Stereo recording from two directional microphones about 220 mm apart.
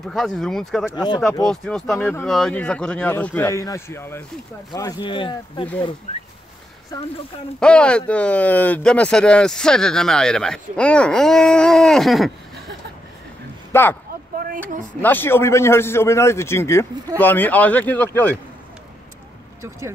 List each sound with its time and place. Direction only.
0.0 s speech: centre (ahead or behind)
0.9 s speech: 20° left (ahead or behind)
1.4 s speech: centre (ahead or behind); by 5.7 s 20° left (ahead or behind)
6.9 s speech: 15° left (ahead or behind)
7.6 s speech: 5° left (ahead or behind)
13.7 s speech: 10° left (ahead or behind)
14.3 s a sound: 40° right (ahead or behind)
15.0 s speech: 10° left (ahead or behind)